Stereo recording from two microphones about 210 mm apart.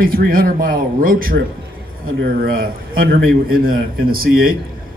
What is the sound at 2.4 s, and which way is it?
Speech, 45° right (ahead or behind).